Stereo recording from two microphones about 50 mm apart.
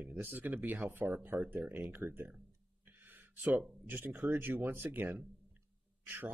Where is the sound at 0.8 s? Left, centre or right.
Right.